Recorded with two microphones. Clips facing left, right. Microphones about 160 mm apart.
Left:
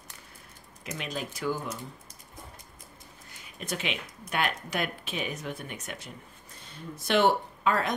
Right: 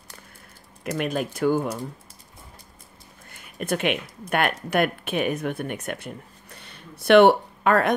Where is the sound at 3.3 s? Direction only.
55° right (ahead or behind).